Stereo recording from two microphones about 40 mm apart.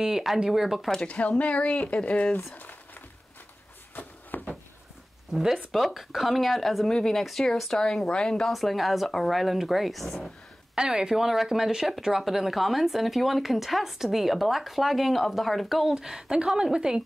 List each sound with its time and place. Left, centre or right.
0.0 s speech: centre
1.0 s speech: left
4.3 s a sound: left
5.3 s speech: centre
5.7 s speech: centre
6.9 s speech: centre
8.1 s speech: left
8.5 s speech: centre
10.7 s speech: right
11.1 s speech: centre